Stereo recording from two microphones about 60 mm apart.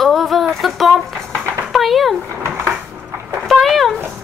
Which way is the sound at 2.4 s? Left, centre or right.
Right.